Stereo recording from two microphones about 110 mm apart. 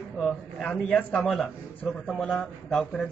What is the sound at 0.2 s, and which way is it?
Speech, centre (ahead or behind).